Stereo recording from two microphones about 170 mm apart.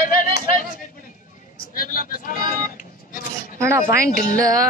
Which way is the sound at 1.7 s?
60° left (ahead or behind).